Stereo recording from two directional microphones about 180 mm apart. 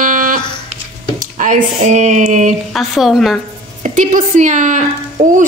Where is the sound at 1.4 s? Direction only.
45° right (ahead or behind).